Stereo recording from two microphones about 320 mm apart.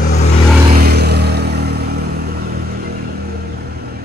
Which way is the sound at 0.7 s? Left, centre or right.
Right.